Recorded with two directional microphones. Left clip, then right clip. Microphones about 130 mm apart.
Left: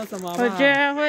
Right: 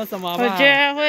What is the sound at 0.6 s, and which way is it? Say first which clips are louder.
Speech: right 4 dB; 30° left (ahead or behind).